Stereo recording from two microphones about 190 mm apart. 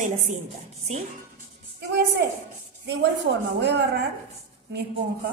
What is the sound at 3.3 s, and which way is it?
Speech, 60° right (ahead or behind).